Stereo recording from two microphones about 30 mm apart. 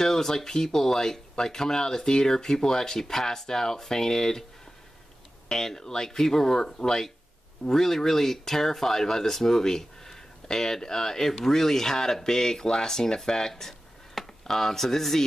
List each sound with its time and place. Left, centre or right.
0.0 s speech: centre
5.5 s speech: left
13.5 s a sound: centre